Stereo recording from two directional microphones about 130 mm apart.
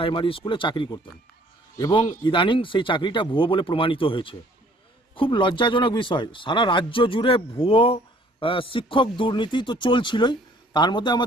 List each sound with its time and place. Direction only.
0.0 s speech: 45° left (ahead or behind)